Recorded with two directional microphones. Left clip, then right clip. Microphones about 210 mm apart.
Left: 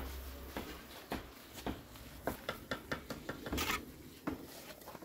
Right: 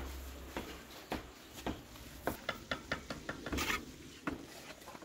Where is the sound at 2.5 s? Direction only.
65° left (ahead or behind).